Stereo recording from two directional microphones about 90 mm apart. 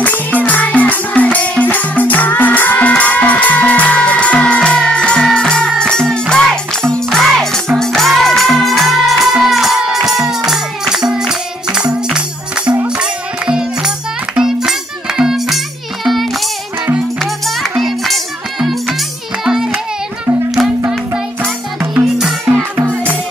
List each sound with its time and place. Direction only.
0.0 s music: 15° left (ahead or behind); by 19.8 s 5° right (ahead or behind)